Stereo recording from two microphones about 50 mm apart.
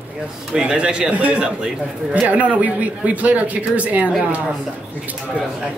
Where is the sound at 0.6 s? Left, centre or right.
Centre.